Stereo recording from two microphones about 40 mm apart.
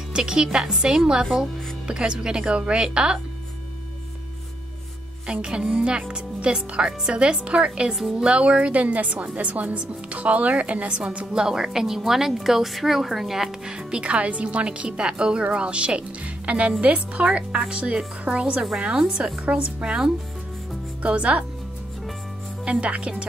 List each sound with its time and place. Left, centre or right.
0.1 s speech: centre
5.2 s a woman's voice: right
11.3 s a woman's voice: centre
13.7 s speech: right
21.0 s a woman's voice: right
22.7 s a woman's voice: right